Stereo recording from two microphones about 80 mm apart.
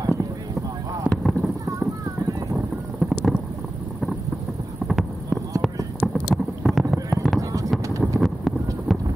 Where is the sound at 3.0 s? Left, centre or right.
Centre.